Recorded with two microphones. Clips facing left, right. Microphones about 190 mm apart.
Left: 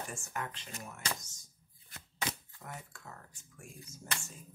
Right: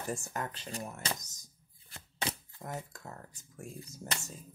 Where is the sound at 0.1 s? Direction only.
40° right (ahead or behind).